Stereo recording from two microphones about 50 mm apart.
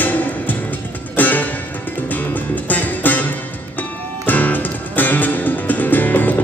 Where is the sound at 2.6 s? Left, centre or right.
Left.